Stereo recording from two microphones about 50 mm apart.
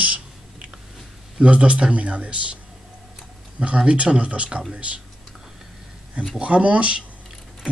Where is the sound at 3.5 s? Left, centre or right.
Right.